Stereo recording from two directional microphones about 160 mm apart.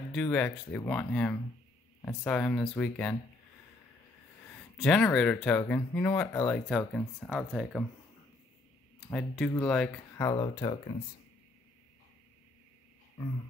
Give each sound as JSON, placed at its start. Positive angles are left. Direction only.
{"t": 0.1, "sound": "speech", "side_deg": 5}
{"t": 4.5, "sound": "speech", "side_deg": 10}
{"t": 7.2, "sound": "speech", "side_deg": 0}
{"t": 9.1, "sound": "speech", "side_deg": 5}
{"t": 10.1, "sound": "speech", "side_deg": 20}